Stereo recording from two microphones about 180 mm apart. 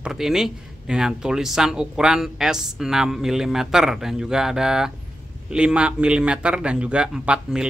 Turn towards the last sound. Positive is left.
turn(degrees=-5)  # may be behind; listen again after turning